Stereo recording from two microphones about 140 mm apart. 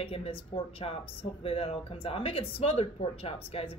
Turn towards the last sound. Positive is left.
turn(degrees=45)  # may be behind; listen again after turning